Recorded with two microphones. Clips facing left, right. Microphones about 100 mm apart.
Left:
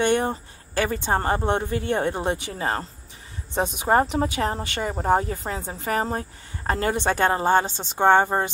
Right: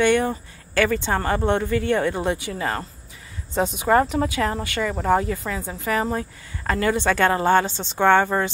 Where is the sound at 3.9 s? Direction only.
30° left (ahead or behind).